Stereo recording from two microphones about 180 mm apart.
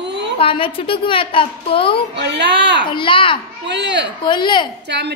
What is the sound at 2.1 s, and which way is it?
Speech, 70° right (ahead or behind).